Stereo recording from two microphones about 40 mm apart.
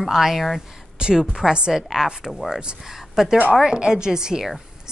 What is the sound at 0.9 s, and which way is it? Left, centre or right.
Speech, right.